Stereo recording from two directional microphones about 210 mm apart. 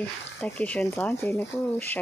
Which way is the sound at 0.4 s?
5° left (ahead or behind).